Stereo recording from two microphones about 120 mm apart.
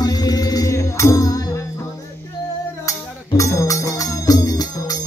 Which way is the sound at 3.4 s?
25° left (ahead or behind).